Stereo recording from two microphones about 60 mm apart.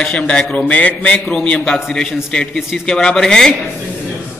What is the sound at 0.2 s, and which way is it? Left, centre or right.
A man's voice, centre.